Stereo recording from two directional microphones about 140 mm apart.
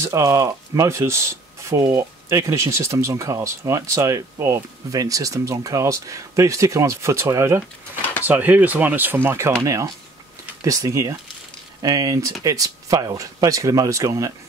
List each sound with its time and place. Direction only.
0.0 s speech: 20° right (ahead or behind)